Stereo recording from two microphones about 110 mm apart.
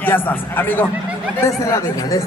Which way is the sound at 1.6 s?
30° left (ahead or behind).